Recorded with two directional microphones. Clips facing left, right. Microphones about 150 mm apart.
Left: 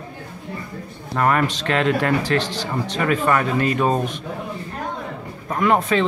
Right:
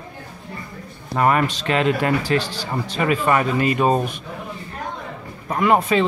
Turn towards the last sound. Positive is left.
turn(degrees=-5)  # may be behind; listen again after turning